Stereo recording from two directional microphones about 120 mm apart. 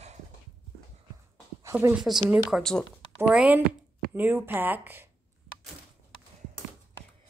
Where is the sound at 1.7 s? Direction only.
15° right (ahead or behind).